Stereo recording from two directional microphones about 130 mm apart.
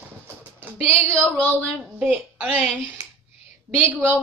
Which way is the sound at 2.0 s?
10° right (ahead or behind).